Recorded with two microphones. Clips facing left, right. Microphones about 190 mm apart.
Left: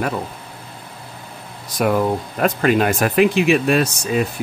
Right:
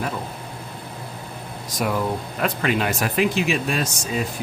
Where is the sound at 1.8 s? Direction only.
55° left (ahead or behind).